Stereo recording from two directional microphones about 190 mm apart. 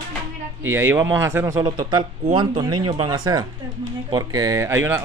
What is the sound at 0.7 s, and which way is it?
A man's voice, 10° right (ahead or behind).